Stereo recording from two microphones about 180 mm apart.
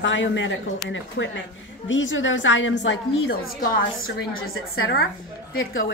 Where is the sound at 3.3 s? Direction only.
50° left (ahead or behind).